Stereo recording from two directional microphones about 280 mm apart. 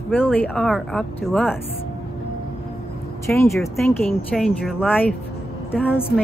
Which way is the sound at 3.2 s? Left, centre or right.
Centre.